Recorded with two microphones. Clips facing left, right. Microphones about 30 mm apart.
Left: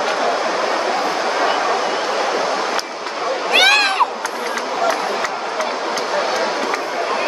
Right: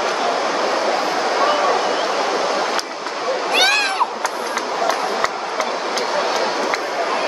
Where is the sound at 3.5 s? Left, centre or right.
Left.